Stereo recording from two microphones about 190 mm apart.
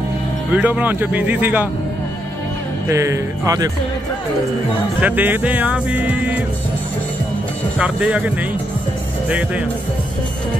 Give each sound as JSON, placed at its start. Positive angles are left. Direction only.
{"t": 0.5, "sound": "speech", "side_deg": -5}
{"t": 2.9, "sound": "speech", "side_deg": -15}
{"t": 5.0, "sound": "speech", "side_deg": -10}
{"t": 7.8, "sound": "speech", "side_deg": -5}